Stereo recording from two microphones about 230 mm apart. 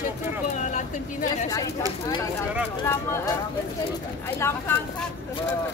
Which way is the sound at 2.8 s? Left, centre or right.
Centre.